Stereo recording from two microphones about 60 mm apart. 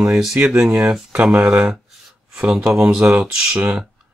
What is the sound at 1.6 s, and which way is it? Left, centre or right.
Speech, centre.